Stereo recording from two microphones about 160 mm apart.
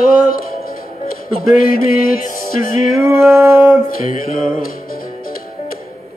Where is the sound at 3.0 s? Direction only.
15° right (ahead or behind).